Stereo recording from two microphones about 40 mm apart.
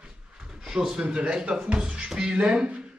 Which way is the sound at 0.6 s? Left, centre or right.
Centre.